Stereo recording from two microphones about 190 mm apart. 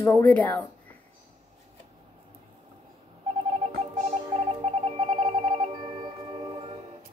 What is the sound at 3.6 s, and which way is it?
Music, 35° right (ahead or behind).